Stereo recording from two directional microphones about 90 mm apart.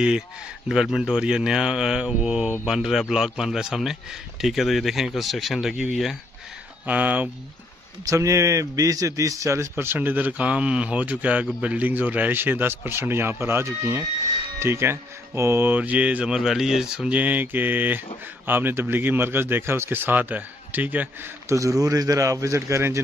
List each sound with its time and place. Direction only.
0.7 s a man's voice: 5° right (ahead or behind)
6.9 s speech: 15° right (ahead or behind)
8.0 s a man's voice: 35° right (ahead or behind); by 21.3 s 20° right (ahead or behind)
21.5 s speech: 35° right (ahead or behind)